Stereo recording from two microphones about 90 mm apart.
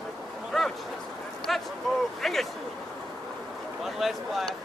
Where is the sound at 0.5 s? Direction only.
5° left (ahead or behind).